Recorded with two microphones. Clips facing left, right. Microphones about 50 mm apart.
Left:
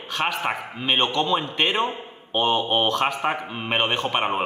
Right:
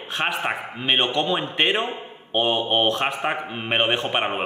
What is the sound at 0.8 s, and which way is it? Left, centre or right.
Speech, centre.